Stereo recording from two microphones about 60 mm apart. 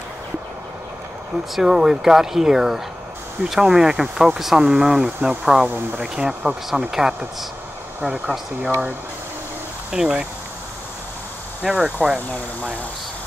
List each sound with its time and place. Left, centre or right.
1.5 s speech: centre
9.8 s speech: centre
11.6 s speech: centre